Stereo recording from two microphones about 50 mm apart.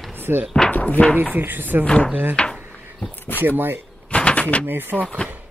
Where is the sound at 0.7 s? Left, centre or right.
Left.